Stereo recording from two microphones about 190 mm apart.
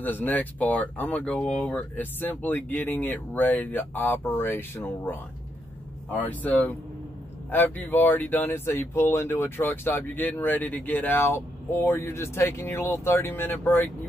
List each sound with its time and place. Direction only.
0.0 s speech: 10° left (ahead or behind)